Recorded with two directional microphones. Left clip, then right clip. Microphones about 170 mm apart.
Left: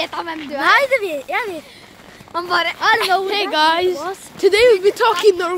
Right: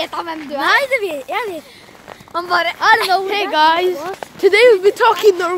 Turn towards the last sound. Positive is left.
turn(degrees=-5)  # may be behind; listen again after turning